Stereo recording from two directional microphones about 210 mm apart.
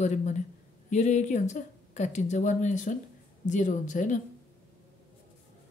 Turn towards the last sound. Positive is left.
turn(degrees=35)  # may be behind; listen again after turning